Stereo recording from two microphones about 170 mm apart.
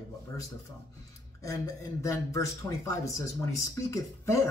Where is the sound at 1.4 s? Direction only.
20° left (ahead or behind).